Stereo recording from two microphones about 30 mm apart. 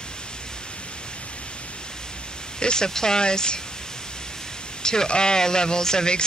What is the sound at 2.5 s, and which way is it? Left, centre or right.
Speech, left.